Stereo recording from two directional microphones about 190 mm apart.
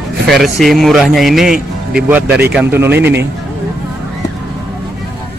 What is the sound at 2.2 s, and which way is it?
Speech, 55° right (ahead or behind).